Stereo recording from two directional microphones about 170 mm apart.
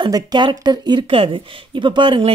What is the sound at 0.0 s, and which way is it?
Speech, 25° right (ahead or behind).